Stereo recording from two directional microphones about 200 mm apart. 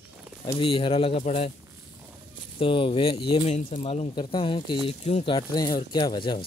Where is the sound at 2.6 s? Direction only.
25° left (ahead or behind).